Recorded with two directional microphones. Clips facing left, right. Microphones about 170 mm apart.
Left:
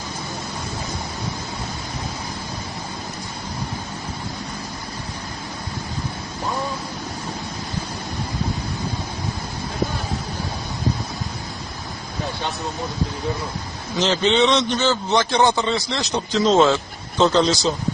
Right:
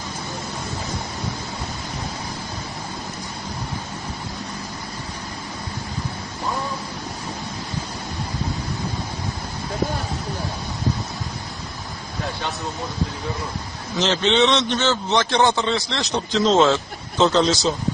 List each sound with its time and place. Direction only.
13.9 s a man's voice: centre (ahead or behind)